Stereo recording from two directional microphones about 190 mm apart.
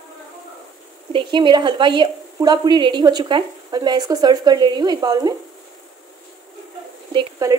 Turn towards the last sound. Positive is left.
turn(degrees=-15)  # may be behind; listen again after turning